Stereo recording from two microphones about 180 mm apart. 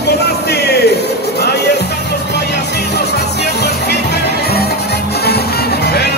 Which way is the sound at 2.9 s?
65° left (ahead or behind).